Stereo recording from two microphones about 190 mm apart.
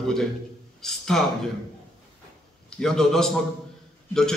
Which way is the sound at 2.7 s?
5° left (ahead or behind).